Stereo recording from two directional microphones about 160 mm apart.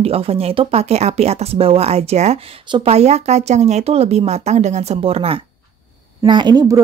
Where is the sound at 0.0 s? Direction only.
40° right (ahead or behind).